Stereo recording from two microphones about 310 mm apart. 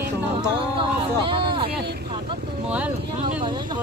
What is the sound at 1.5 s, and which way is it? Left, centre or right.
Vehicle, centre.